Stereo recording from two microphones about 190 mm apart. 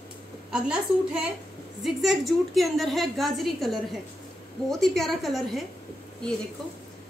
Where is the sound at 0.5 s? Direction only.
5° right (ahead or behind).